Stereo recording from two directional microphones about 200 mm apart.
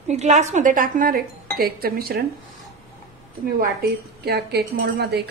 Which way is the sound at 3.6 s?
50° right (ahead or behind).